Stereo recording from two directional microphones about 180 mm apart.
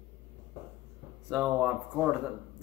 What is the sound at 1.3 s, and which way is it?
Speech, 5° right (ahead or behind).